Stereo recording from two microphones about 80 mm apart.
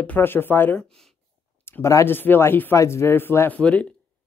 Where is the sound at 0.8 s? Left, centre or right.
Centre.